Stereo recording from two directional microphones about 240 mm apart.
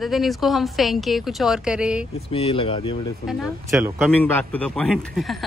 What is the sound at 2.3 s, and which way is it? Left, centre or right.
Speech, left.